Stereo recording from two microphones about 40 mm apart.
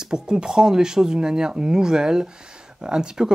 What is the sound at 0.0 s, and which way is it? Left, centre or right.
Speech, centre.